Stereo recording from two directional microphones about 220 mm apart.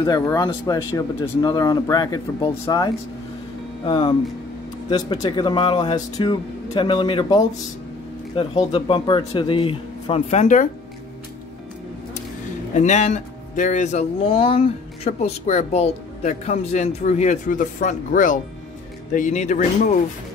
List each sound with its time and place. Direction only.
0.0 s speech: 20° left (ahead or behind); by 10.7 s 35° left (ahead or behind)
12.7 s speech: 35° left (ahead or behind)